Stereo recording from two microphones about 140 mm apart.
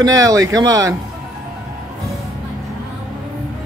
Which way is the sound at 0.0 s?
25° right (ahead or behind).